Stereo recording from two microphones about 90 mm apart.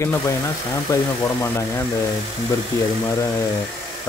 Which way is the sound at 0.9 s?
35° left (ahead or behind).